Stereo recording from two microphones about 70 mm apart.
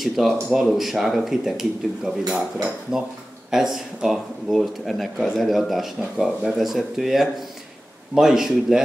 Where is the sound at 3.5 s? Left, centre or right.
Centre.